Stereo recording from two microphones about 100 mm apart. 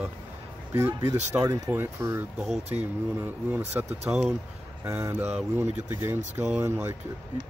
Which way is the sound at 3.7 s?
25° right (ahead or behind).